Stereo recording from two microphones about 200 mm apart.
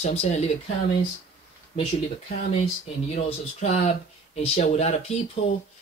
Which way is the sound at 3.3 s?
35° left (ahead or behind).